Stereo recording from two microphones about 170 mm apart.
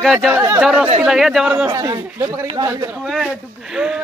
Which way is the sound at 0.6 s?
5° right (ahead or behind).